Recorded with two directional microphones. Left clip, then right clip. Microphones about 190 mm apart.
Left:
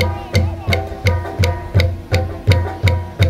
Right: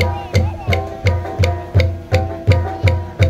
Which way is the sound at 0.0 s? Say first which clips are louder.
Even; 45° left (ahead or behind).